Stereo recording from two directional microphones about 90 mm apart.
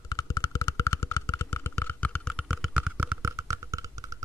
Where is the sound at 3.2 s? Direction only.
35° right (ahead or behind).